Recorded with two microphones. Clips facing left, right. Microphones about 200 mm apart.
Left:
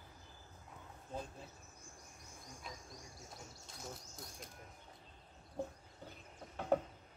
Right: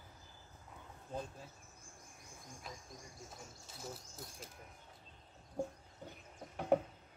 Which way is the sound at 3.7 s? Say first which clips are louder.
Right 2 dB; 5° right (ahead or behind).